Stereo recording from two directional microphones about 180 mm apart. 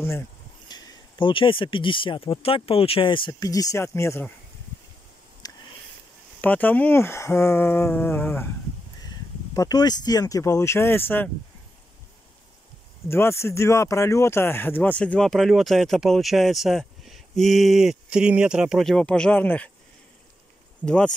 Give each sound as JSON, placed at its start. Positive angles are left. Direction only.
{"t": 0.7, "sound": "speech", "side_deg": 25}
{"t": 5.4, "sound": "a sound", "side_deg": 20}
{"t": 6.4, "sound": "speech", "side_deg": 10}
{"t": 13.1, "sound": "speech", "side_deg": 15}
{"t": 20.8, "sound": "speech", "side_deg": 5}